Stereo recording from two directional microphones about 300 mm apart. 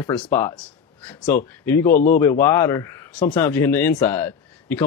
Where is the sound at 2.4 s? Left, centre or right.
Centre.